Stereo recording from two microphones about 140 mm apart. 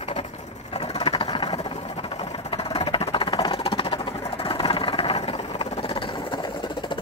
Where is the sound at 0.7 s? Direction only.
45° left (ahead or behind).